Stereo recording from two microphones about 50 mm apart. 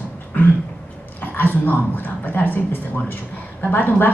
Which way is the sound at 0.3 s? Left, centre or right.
Left.